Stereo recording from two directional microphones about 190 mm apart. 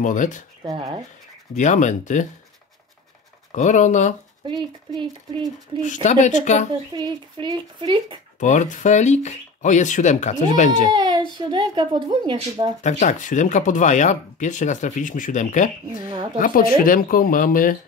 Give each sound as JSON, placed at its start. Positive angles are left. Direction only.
{"t": 0.0, "sound": "speech", "side_deg": 45}
{"t": 0.7, "sound": "speech", "side_deg": -30}
{"t": 1.5, "sound": "speech", "side_deg": 40}
{"t": 3.5, "sound": "speech", "side_deg": 40}
{"t": 4.9, "sound": "speech", "side_deg": -20}
{"t": 6.0, "sound": "speech", "side_deg": 40}
{"t": 6.9, "sound": "speech", "side_deg": -25}
{"t": 8.4, "sound": "speech", "side_deg": 40}
{"t": 10.9, "sound": "speech", "side_deg": -25}
{"t": 12.8, "sound": "speech", "side_deg": 40}